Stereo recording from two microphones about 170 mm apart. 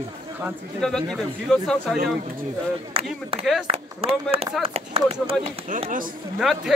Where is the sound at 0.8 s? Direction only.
Centre (ahead or behind).